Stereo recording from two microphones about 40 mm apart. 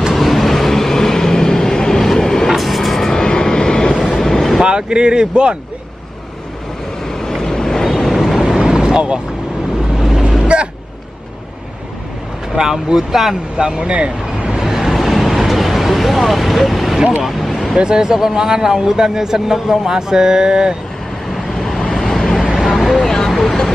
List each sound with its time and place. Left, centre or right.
0.1 s vehicle: centre
2.5 s vehicle: centre
3.2 s vehicle: centre
4.6 s speech: right
7.1 s vehicle: centre
8.5 s vehicle: centre
9.9 s vehicle: centre
10.5 s music: right
12.5 s a man's voice: centre
13.6 s speech: centre
13.9 s vehicle: right
14.6 s vehicle: centre
17.7 s a man's voice: centre
21.3 s vehicle: centre